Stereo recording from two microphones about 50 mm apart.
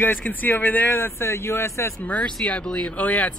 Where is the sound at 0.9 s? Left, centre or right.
Left.